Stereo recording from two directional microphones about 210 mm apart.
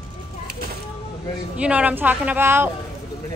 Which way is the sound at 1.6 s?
5° right (ahead or behind).